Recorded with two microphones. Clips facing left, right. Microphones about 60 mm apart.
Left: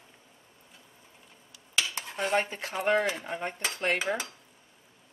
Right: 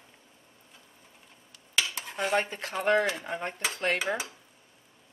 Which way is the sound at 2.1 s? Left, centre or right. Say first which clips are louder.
Even; centre.